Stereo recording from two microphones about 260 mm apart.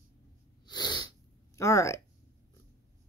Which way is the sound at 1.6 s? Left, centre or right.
Centre.